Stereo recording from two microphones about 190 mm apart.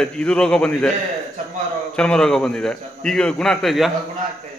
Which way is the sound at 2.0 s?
5° left (ahead or behind).